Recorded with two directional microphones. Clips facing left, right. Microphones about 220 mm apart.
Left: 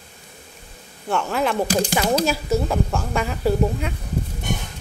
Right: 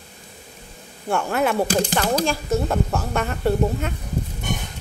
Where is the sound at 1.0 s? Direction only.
10° right (ahead or behind).